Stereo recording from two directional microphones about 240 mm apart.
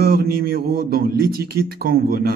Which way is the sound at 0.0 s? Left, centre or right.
Right.